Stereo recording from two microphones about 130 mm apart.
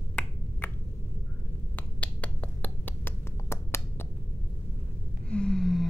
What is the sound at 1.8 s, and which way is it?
Finger snapping, 10° left (ahead or behind).